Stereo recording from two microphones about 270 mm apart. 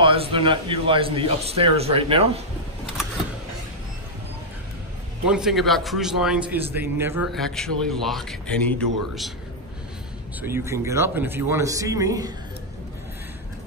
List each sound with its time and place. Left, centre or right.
0.0 s a man's voice: centre
5.2 s a man's voice: centre
10.4 s a man's voice: centre